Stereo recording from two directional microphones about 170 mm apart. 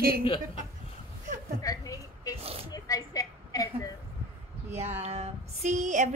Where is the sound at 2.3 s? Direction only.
35° right (ahead or behind).